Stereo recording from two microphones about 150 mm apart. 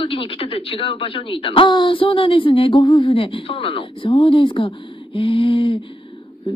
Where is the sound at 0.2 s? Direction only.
40° left (ahead or behind).